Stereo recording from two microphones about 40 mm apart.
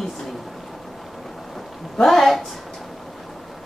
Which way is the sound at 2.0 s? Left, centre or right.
Centre.